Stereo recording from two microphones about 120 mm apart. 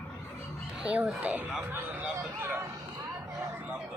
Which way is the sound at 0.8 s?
10° right (ahead or behind).